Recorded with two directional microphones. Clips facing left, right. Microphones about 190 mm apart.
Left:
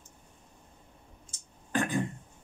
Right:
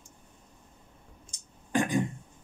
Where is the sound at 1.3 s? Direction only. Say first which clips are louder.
Right 3 dB; 15° right (ahead or behind).